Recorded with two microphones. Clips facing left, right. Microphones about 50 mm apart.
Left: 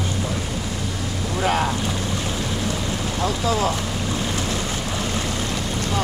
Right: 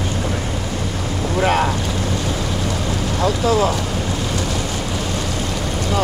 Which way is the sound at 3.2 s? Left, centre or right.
Right.